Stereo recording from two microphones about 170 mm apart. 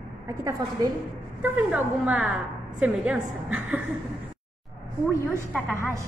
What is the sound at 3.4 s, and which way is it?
Speech, 10° right (ahead or behind).